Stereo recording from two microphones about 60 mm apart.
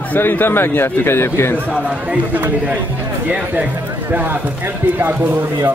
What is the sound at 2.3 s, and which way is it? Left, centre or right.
A man's voice, right.